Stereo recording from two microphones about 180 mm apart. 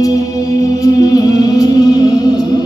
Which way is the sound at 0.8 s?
20° left (ahead or behind).